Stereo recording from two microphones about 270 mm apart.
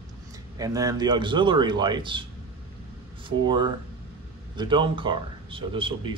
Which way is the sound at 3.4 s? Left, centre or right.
Centre.